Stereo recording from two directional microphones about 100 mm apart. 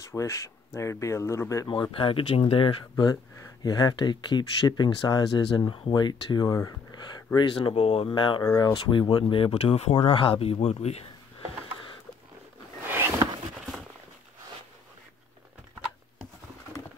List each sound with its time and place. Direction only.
0.1 s speech: 30° left (ahead or behind)
1.7 s speech: 60° left (ahead or behind)
3.6 s speech: 40° left (ahead or behind)
7.5 s speech: 75° left (ahead or behind)
8.1 s speech: 50° left (ahead or behind)
8.4 s speech: 35° left (ahead or behind)
8.7 s speech: 50° left (ahead or behind); by 11.1 s 90° left
12.8 s a sound: 25° right (ahead or behind)